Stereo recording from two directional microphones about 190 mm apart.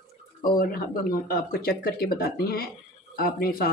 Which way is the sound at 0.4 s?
50° left (ahead or behind).